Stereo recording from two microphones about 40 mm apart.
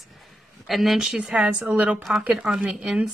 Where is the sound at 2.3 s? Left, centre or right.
Centre.